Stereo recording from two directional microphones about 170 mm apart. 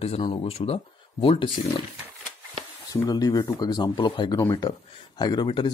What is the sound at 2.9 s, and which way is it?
Speech, 20° left (ahead or behind).